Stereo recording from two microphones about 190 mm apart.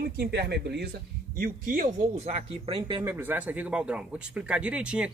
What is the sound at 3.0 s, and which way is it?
Speech, 10° right (ahead or behind).